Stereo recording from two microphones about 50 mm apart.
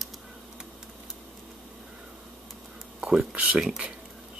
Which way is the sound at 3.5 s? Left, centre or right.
Centre.